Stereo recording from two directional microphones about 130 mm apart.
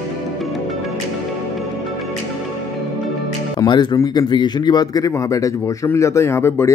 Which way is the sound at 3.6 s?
35° left (ahead or behind).